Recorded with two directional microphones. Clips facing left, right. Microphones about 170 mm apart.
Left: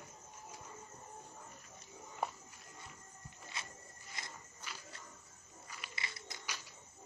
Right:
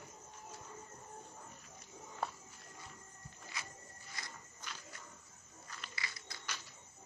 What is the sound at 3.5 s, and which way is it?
Rub, 25° left (ahead or behind).